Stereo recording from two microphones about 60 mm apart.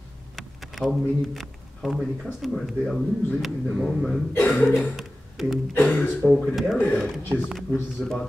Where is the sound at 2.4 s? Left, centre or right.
Centre.